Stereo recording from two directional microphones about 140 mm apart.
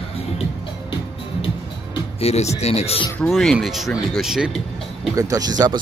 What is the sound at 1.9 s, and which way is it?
Speech, 50° left (ahead or behind).